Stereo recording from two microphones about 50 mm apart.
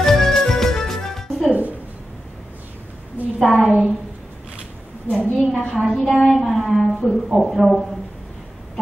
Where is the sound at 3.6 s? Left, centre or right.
Left.